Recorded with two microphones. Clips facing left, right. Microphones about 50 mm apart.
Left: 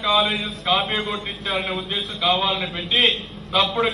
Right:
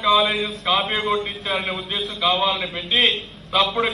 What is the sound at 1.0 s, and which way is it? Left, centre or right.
Speech, right.